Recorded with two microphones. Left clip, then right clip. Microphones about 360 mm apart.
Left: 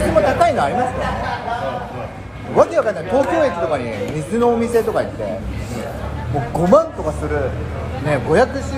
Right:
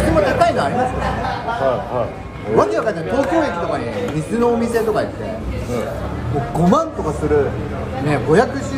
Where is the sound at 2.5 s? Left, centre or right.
Centre.